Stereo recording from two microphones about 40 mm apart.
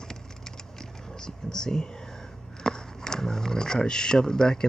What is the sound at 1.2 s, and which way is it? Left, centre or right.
Speech, centre.